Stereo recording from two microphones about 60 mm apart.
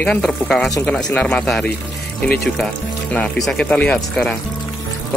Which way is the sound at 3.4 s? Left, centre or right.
Centre.